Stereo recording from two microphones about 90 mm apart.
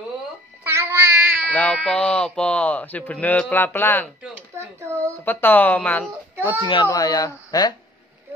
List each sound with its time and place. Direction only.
0.7 s a sound: 30° right (ahead or behind)
1.5 s a man's voice: 15° left (ahead or behind)
4.6 s a sound: 30° right (ahead or behind)
5.2 s speech: 20° left (ahead or behind)
6.6 s a child's voice: 70° left (ahead or behind)
7.0 s speech: 40° left (ahead or behind)